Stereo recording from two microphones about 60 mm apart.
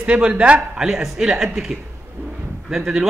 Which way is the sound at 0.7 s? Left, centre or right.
Centre.